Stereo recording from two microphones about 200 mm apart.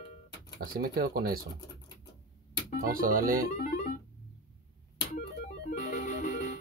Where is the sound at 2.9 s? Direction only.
45° right (ahead or behind).